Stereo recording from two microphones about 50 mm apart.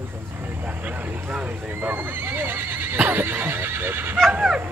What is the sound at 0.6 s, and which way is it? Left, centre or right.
Speech, right.